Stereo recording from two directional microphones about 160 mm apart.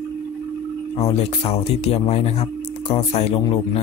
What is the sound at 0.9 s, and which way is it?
Speech, 40° left (ahead or behind).